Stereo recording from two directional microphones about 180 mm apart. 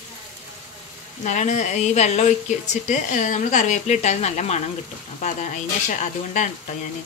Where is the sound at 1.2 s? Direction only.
40° left (ahead or behind).